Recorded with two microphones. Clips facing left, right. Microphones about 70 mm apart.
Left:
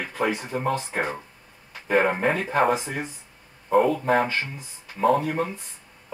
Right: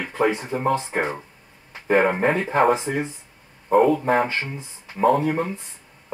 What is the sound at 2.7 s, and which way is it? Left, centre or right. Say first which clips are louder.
Speech: right 4 dB; right.